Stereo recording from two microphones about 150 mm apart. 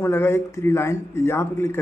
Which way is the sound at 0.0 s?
15° left (ahead or behind).